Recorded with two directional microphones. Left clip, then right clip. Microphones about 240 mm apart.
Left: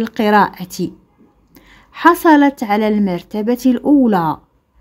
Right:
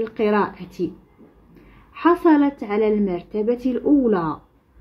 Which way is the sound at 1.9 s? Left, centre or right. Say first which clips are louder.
Left 6 dB; left.